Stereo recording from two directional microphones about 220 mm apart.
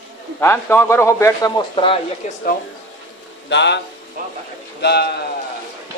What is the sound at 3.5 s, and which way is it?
Speech, 50° left (ahead or behind).